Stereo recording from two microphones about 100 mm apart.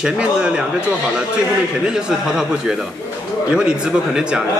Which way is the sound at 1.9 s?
5° right (ahead or behind).